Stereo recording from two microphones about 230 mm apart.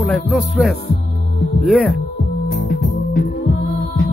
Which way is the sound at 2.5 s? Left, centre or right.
Left.